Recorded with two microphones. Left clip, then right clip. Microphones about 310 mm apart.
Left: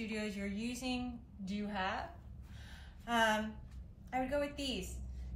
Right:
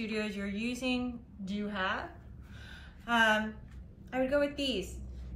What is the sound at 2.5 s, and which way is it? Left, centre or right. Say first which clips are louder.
Gasp: right 6 dB; left.